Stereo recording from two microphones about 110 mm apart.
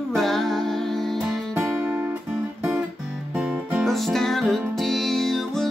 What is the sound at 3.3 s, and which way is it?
Music, 10° right (ahead or behind).